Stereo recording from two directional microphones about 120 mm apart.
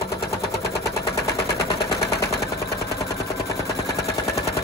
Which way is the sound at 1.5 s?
30° left (ahead or behind).